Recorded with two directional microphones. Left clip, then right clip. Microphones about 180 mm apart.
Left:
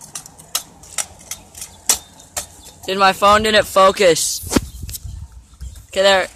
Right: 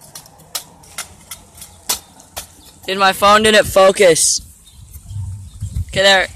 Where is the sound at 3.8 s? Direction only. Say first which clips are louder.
Right 2 dB; 10° right (ahead or behind).